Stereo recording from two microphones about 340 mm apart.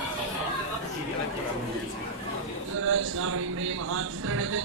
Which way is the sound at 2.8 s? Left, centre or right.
Right.